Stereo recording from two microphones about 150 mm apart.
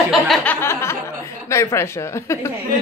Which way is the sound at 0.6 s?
15° left (ahead or behind).